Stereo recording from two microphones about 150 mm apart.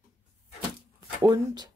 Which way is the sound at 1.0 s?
25° right (ahead or behind).